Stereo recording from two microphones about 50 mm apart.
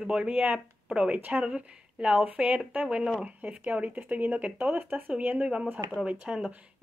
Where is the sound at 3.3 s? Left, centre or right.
Right.